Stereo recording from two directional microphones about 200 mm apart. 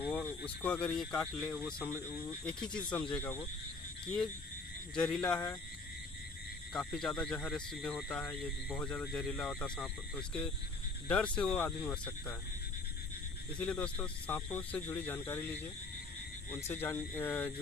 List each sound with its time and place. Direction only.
0.1 s speech: 5° left (ahead or behind)
4.9 s speech: 5° left (ahead or behind)
6.7 s speech: centre (ahead or behind)
13.6 s speech: 5° left (ahead or behind)
16.4 s speech: 10° left (ahead or behind)